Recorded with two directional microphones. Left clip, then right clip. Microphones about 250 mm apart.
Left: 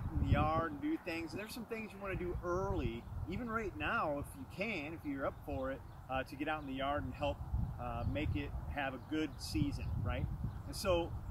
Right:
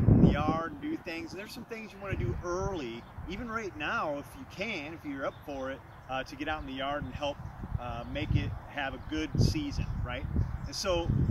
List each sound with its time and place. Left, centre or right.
0.2 s speech: centre